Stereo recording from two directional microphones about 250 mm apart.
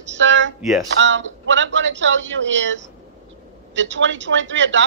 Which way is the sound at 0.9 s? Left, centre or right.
Right.